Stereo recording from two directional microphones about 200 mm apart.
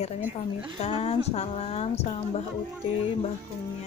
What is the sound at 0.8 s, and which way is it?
A woman's voice, 30° left (ahead or behind).